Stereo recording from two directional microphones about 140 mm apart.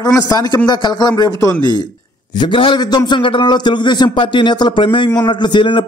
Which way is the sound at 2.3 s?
35° left (ahead or behind).